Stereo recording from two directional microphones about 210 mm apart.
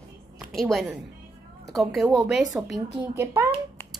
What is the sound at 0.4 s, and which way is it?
Speech, centre (ahead or behind).